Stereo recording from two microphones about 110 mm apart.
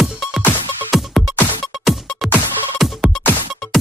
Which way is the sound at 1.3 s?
20° left (ahead or behind).